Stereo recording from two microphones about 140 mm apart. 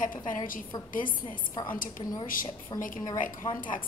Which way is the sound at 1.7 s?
75° left (ahead or behind).